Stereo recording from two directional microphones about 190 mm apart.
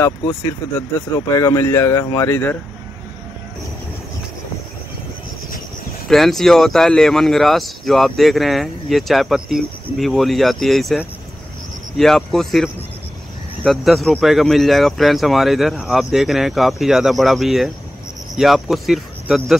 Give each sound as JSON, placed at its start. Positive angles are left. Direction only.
{"t": 0.0, "sound": "speech", "side_deg": 20}
{"t": 6.0, "sound": "speech", "side_deg": 0}